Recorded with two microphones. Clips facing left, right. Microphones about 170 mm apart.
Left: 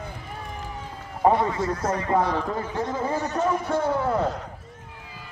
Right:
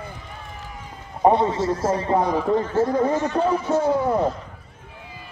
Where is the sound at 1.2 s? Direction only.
25° right (ahead or behind).